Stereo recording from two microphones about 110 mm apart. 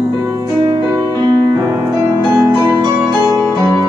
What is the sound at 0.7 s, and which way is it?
Music, 35° right (ahead or behind).